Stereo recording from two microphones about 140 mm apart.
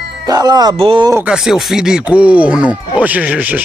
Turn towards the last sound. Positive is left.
turn(degrees=-10)  # may be behind; listen again after turning